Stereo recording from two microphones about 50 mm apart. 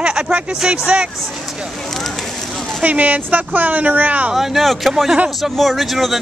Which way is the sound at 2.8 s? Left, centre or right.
Right.